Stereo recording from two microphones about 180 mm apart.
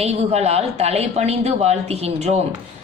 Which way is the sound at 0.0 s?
35° right (ahead or behind).